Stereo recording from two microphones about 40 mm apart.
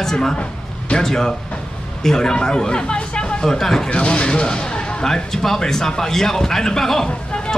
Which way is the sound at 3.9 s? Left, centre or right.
Left.